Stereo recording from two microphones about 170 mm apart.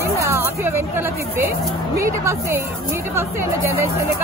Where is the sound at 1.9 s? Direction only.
15° right (ahead or behind).